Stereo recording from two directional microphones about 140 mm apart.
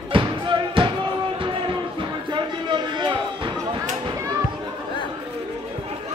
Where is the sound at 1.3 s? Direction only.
35° right (ahead or behind).